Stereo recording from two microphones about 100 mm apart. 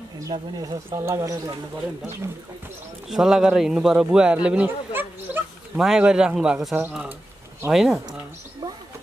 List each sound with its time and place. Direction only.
0.3 s speech: 55° right (ahead or behind)
0.9 s speech: 30° right (ahead or behind)
3.1 s a man's voice: 5° right (ahead or behind)
5.8 s a man's voice: 5° right (ahead or behind)